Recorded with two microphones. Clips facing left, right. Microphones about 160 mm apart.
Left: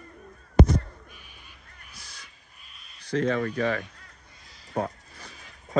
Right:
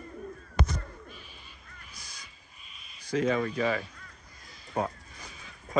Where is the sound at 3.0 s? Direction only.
10° right (ahead or behind).